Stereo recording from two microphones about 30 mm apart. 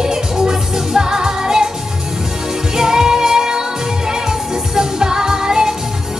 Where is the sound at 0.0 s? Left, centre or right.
Centre.